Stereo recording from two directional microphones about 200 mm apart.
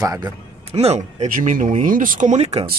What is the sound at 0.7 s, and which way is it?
Speech, 30° right (ahead or behind).